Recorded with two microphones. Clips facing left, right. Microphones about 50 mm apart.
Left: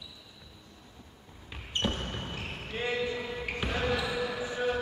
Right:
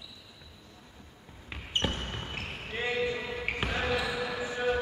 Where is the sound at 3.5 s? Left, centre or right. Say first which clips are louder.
Left 1 dB; right.